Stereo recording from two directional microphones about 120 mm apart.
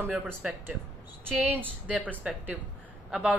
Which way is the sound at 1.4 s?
15° right (ahead or behind).